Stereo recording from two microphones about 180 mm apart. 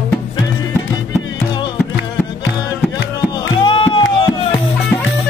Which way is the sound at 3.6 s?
25° left (ahead or behind).